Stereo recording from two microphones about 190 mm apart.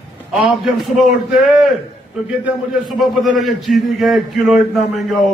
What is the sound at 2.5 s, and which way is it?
A man's voice, centre (ahead or behind).